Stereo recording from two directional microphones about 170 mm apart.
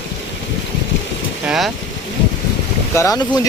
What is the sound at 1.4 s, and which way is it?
Speech, centre (ahead or behind).